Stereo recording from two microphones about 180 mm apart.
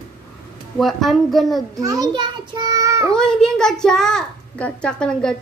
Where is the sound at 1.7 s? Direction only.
20° right (ahead or behind).